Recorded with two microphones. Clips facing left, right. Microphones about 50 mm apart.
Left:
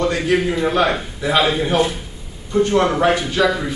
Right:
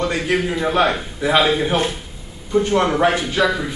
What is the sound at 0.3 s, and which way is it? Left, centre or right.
A man's voice, centre.